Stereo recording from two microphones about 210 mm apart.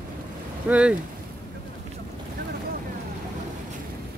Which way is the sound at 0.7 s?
5° right (ahead or behind).